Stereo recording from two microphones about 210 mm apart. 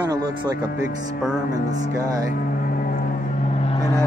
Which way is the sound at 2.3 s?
45° left (ahead or behind).